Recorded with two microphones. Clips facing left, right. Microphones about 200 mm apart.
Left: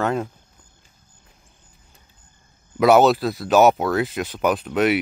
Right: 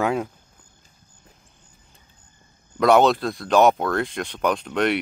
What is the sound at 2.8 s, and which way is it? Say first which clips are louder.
Speech: left 2 dB; 5° left (ahead or behind).